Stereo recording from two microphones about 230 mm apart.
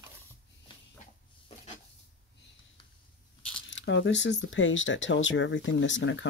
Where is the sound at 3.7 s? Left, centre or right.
Left.